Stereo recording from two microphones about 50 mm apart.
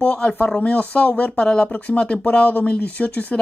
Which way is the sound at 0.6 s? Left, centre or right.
Left.